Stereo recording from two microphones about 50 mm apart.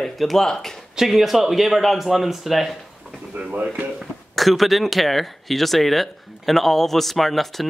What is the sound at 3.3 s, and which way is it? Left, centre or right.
Speech, right.